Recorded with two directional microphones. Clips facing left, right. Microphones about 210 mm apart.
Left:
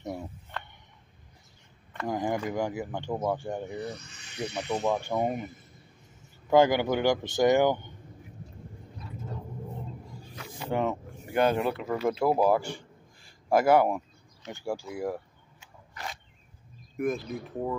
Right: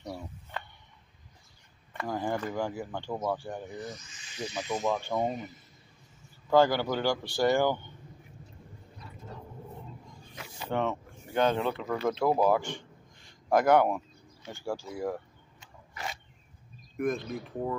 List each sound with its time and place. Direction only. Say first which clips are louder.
0.0 s a sound: left 4 dB; 20° left (ahead or behind)
2.0 s speech: left 2 dB; 15° left (ahead or behind)
3.7 s speech: left 4 dB; 65° left (ahead or behind)
4.8 s speech: left 2 dB; 15° left (ahead or behind)
6.5 s speech: left 2 dB; 15° left (ahead or behind)
10.6 s speech: left 2 dB; 5° left (ahead or behind)
15.9 s a sound: right 1 dB; 5° right (ahead or behind)
16.9 s speech: left 1 dB; 5° left (ahead or behind)